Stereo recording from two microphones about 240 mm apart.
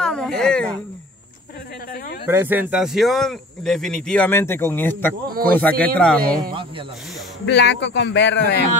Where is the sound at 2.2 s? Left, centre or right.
Centre.